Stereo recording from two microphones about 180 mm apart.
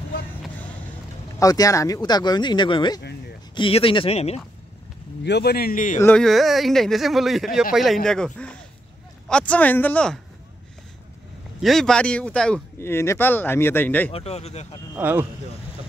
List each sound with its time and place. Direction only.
1.4 s speech: 20° left (ahead or behind); by 4.4 s 35° left (ahead or behind)
5.2 s speech: 65° left (ahead or behind); by 5.9 s 50° left (ahead or behind)
5.9 s speech: 5° left (ahead or behind)
11.6 s speech: centre (ahead or behind)
14.1 s speech: 35° left (ahead or behind)
15.0 s speech: 10° right (ahead or behind)